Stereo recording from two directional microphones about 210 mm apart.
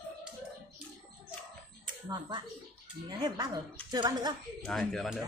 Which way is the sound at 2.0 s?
20° right (ahead or behind).